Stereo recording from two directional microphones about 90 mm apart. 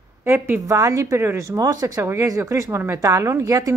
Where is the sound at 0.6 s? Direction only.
35° right (ahead or behind).